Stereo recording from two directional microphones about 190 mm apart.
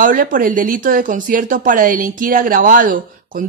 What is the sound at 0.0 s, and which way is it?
Speech, 45° right (ahead or behind).